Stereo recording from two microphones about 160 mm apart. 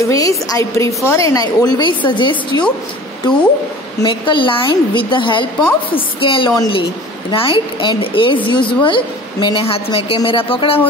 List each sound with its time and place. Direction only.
0.1 s a woman's voice: 20° left (ahead or behind)
4.0 s a woman's voice: 30° left (ahead or behind)